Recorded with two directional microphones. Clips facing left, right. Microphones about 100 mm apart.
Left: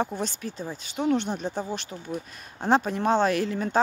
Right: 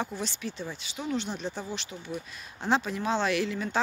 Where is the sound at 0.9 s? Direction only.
55° left (ahead or behind).